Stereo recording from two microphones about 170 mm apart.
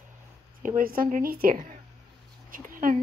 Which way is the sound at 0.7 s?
55° right (ahead or behind).